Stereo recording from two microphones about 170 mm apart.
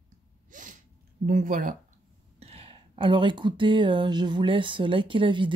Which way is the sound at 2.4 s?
35° right (ahead or behind).